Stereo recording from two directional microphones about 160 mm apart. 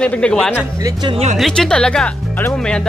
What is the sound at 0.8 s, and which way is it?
Speech, 30° right (ahead or behind).